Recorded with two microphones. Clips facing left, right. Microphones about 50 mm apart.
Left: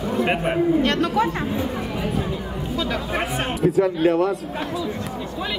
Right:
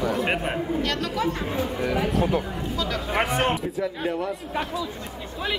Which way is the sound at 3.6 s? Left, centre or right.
Left.